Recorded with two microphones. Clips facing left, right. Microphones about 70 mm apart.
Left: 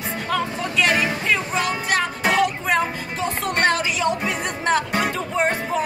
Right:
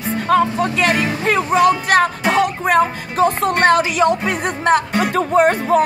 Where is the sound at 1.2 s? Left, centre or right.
Right.